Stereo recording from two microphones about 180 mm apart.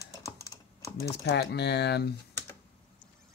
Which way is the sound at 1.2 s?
70° left (ahead or behind).